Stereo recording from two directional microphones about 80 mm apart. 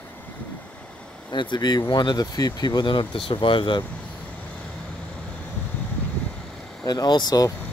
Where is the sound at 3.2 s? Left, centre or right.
Left.